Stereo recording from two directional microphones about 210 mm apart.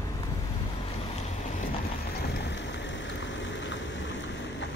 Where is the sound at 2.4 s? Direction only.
60° left (ahead or behind).